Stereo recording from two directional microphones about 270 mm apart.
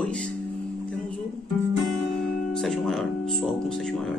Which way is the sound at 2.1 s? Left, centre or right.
Centre.